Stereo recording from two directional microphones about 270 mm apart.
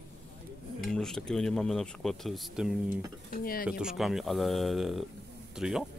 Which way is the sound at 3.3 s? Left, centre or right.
Left.